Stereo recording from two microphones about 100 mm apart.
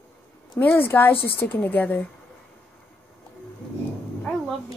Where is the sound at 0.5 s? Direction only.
20° left (ahead or behind).